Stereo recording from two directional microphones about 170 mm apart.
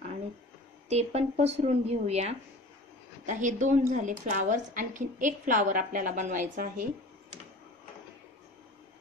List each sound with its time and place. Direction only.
0.8 s a woman's voice: 40° right (ahead or behind)